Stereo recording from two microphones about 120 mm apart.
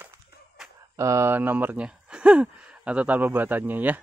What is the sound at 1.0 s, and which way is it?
Speech, 25° right (ahead or behind).